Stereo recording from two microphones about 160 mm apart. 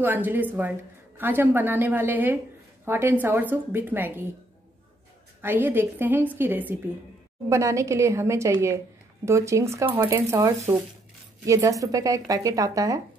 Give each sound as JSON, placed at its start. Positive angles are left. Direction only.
{"t": 0.0, "sound": "a woman's voice", "side_deg": -10}
{"t": 5.4, "sound": "a woman's voice", "side_deg": -15}